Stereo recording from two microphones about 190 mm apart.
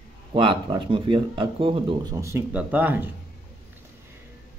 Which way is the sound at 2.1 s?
15° right (ahead or behind).